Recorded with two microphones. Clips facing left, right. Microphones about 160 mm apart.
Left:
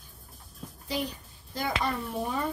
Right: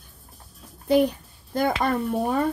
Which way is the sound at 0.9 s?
55° right (ahead or behind).